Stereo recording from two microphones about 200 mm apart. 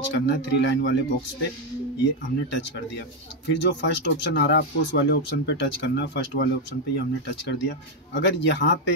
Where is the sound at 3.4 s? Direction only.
60° left (ahead or behind).